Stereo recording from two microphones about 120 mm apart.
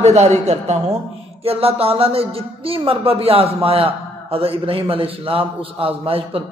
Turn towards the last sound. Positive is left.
turn(degrees=-50)  # may be behind; listen again after turning